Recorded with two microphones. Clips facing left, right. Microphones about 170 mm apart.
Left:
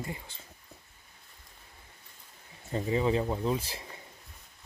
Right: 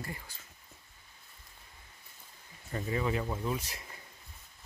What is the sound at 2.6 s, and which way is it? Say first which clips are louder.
Speech: left 5 dB; 25° left (ahead or behind).